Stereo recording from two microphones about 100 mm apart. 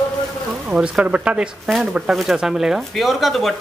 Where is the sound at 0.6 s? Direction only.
10° right (ahead or behind).